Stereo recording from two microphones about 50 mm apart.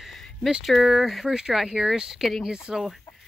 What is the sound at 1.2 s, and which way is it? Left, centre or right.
Speech, centre.